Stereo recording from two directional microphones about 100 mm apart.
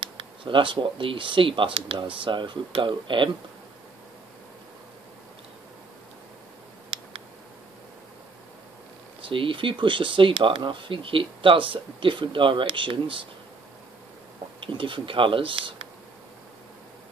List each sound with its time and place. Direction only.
0.0 s speech: 55° right (ahead or behind)
9.2 s speech: 60° right (ahead or behind)
14.7 s speech: 55° right (ahead or behind)